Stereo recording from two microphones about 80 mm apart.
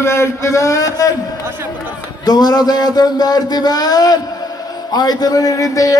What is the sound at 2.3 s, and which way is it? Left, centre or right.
Speech, left.